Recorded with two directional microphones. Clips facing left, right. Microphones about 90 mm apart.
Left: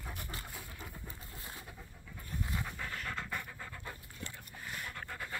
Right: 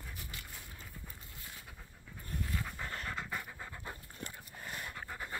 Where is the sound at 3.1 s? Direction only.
15° right (ahead or behind).